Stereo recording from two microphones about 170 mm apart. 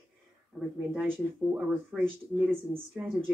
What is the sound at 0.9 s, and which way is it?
Speech, 10° right (ahead or behind).